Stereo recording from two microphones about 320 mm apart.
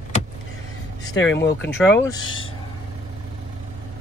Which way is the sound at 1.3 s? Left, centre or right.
Left.